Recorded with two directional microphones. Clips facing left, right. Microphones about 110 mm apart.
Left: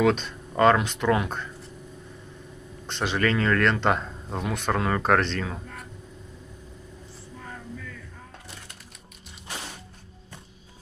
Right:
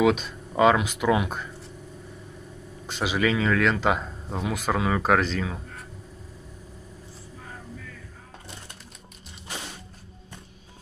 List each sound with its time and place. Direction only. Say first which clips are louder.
0.0 s speech: right 1 dB; 5° right (ahead or behind)
2.9 s speech: right 1 dB; 5° right (ahead or behind)